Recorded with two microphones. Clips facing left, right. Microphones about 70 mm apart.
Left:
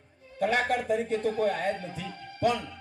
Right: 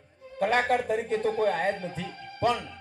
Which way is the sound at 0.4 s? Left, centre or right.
Right.